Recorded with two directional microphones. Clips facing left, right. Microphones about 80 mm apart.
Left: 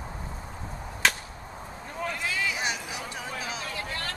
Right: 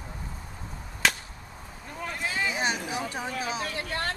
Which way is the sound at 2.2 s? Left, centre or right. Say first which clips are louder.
Right 4 dB; right.